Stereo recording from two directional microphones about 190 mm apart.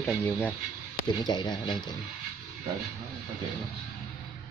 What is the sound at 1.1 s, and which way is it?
Speech, 20° left (ahead or behind).